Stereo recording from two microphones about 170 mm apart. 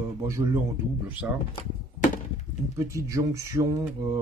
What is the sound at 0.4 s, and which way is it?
Speech, 20° right (ahead or behind).